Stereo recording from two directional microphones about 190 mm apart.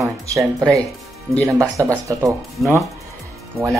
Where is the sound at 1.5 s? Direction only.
15° right (ahead or behind).